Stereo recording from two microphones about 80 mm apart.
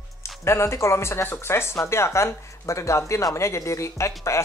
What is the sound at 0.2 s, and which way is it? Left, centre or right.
Speech, left.